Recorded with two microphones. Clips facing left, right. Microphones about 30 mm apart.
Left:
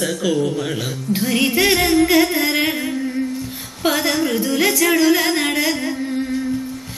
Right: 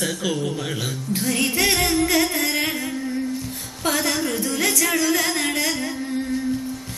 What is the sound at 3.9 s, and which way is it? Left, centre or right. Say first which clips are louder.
Music: left 4 dB; centre.